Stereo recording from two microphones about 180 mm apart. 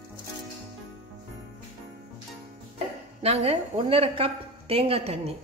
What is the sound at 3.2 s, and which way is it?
A woman's voice, 35° right (ahead or behind).